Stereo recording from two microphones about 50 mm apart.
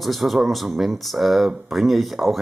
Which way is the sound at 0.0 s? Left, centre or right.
Centre.